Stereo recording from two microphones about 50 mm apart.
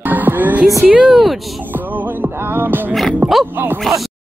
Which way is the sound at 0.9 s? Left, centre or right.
Centre.